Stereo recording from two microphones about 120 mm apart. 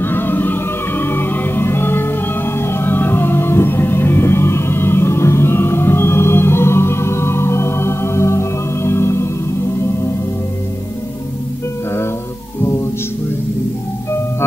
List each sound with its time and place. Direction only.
0.0 s music: 15° left (ahead or behind)